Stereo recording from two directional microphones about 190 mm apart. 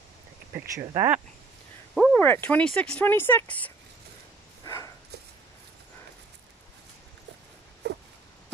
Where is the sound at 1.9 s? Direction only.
Centre (ahead or behind).